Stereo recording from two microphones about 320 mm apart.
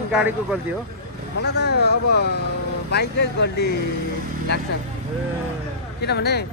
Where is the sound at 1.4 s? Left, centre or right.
Left.